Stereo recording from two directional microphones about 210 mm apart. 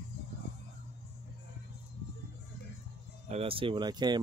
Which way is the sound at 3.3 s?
25° right (ahead or behind).